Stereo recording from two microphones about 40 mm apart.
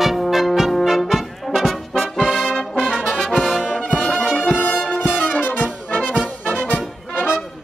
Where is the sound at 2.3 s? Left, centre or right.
Centre.